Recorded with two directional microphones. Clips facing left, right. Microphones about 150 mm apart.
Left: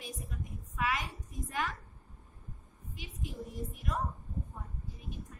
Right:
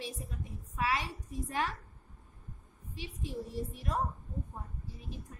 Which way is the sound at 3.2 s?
30° right (ahead or behind).